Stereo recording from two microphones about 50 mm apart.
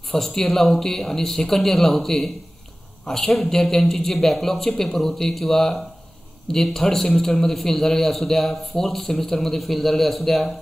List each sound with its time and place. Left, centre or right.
0.3 s a man's voice: centre
3.3 s a man's voice: centre